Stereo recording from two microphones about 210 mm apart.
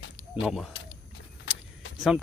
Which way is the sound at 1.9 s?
Centre (ahead or behind).